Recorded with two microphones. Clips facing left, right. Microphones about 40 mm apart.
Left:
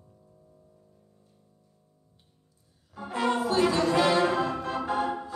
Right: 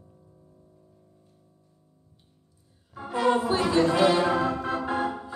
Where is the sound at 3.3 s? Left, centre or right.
Centre.